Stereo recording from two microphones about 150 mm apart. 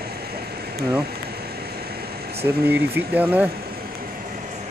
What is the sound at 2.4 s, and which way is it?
Speech, 15° right (ahead or behind).